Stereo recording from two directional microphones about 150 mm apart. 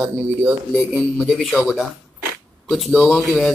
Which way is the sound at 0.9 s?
Centre (ahead or behind).